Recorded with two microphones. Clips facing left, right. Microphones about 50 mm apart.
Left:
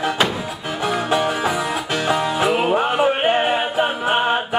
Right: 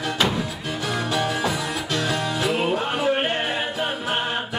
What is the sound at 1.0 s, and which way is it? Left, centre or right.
Music, left.